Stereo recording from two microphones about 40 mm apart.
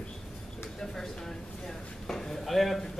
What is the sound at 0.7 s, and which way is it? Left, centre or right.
A man's voice, centre.